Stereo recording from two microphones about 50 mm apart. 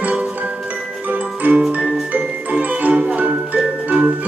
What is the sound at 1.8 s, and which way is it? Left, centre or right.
Music, right.